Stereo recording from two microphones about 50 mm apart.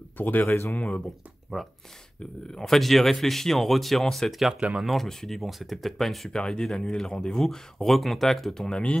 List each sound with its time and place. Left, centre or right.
0.2 s speech: left
0.7 s speech: left
1.5 s speech: centre
2.5 s speech: centre
4.6 s speech: centre
4.8 s speech: centre
8.6 s speech: centre